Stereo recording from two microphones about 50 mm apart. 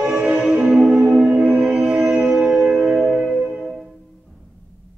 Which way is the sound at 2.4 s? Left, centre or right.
Centre.